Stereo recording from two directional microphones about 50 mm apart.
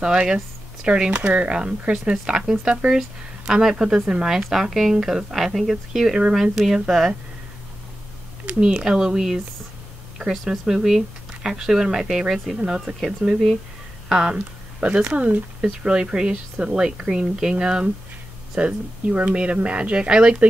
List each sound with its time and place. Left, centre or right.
0.0 s speech: centre
2.9 s speech: centre
8.5 s speech: centre
12.5 s speech: right
13.2 s speech: centre